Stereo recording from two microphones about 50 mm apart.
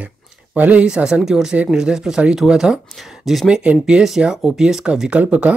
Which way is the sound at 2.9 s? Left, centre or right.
Centre.